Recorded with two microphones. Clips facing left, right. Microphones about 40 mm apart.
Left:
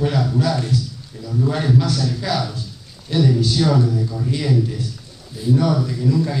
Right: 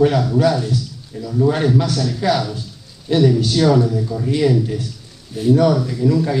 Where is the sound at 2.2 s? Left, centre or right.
Right.